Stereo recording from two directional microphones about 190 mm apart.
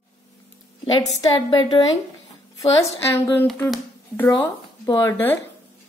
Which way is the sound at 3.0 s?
15° left (ahead or behind).